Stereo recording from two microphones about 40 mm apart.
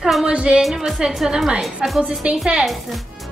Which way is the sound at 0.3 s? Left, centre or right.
Right.